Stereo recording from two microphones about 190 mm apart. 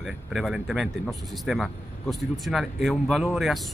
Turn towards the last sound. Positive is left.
turn(degrees=0)  # may be behind; listen again after turning